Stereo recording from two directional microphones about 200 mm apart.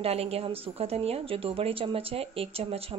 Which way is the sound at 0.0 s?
30° right (ahead or behind).